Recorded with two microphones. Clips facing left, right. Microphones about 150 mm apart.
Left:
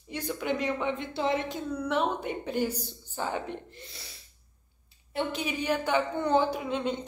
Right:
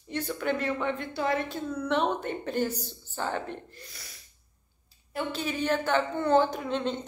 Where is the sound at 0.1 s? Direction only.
15° left (ahead or behind).